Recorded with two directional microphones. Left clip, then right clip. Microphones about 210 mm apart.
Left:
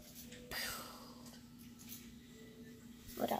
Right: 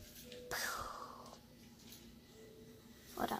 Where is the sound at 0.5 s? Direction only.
10° right (ahead or behind).